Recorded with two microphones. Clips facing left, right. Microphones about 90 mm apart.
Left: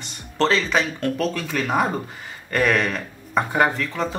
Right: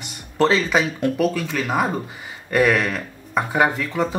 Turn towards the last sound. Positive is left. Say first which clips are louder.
# right 2 dB
turn(degrees=-10)  # may be behind; listen again after turning